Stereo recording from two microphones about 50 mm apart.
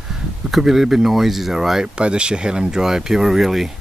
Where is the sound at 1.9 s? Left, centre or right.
Centre.